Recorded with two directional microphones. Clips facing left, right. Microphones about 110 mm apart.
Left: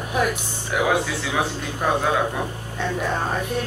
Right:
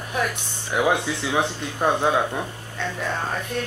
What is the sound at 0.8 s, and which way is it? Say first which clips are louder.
Speech: left 1 dB; 20° right (ahead or behind).